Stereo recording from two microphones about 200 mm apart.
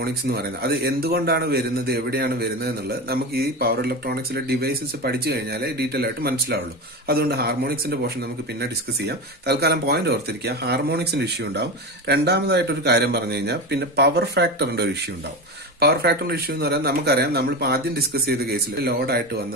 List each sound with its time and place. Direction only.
0.0 s a man's voice: 50° right (ahead or behind)